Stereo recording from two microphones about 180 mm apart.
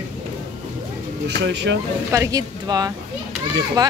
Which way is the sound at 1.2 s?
75° right (ahead or behind).